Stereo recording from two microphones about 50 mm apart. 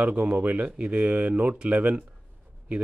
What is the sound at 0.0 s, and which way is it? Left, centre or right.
Speech, right.